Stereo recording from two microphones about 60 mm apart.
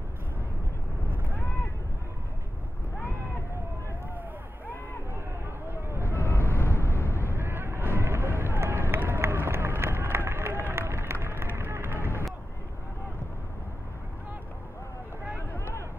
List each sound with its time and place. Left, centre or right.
1.3 s vehicle: left
6.0 s vehicle: left
7.3 s vehicle: right
8.0 s run: right
15.5 s a sound: left